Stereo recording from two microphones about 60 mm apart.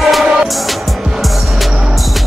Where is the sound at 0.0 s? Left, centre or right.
Centre.